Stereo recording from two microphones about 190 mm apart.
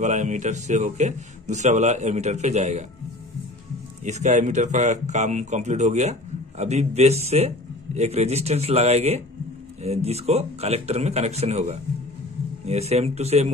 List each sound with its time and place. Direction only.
0.0 s a man's voice: 40° right (ahead or behind)
4.0 s a man's voice: 35° right (ahead or behind)